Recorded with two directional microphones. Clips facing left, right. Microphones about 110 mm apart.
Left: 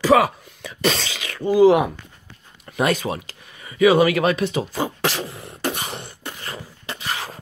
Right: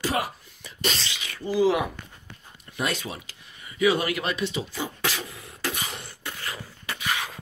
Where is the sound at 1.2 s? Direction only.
65° left (ahead or behind).